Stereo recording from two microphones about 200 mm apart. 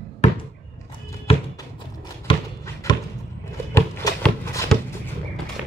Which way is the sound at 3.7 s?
15° left (ahead or behind).